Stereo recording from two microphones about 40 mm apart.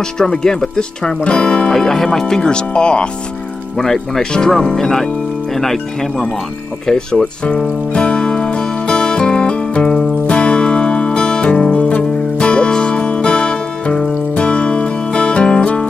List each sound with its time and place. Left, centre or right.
0.4 s speech: centre
1.7 s speech: centre; by 3.1 s left
3.7 s speech: centre
7.4 s music: left